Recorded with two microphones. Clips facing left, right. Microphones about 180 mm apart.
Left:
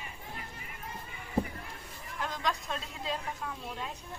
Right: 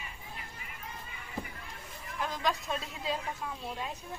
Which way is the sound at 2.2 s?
5° right (ahead or behind).